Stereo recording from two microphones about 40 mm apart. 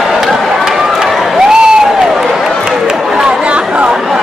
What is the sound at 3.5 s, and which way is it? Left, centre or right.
Chatter, right.